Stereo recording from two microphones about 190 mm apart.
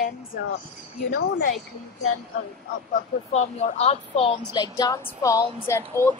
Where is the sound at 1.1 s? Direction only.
55° left (ahead or behind).